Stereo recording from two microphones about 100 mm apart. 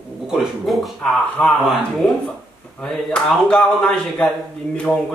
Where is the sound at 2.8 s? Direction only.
10° left (ahead or behind).